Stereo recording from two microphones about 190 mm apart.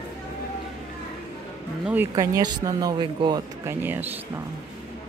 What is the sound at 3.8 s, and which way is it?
Speech, 10° right (ahead or behind).